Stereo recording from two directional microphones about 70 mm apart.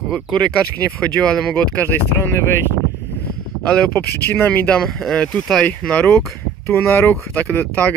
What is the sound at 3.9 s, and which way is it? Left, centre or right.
Speech, left.